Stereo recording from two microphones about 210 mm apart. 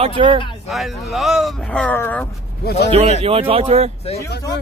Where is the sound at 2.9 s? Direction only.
30° right (ahead or behind).